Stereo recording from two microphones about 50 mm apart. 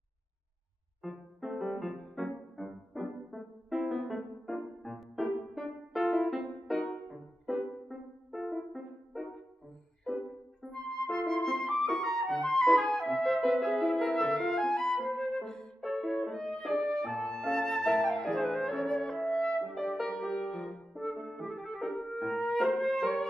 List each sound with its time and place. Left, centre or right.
1.0 s piano: centre
1.6 s music: centre
10.7 s flute: centre
15.0 s music: centre
16.9 s flute: centre
19.6 s music: centre